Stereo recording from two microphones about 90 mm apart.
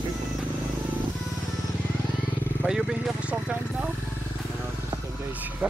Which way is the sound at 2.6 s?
5° right (ahead or behind).